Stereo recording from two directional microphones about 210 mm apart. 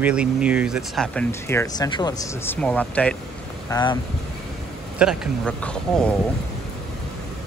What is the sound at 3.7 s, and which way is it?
Speech, 20° left (ahead or behind).